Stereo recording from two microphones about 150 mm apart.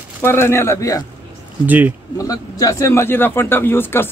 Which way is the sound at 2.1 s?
25° left (ahead or behind).